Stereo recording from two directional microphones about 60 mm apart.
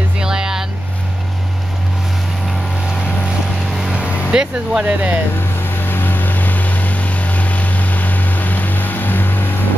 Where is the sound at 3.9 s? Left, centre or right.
Centre.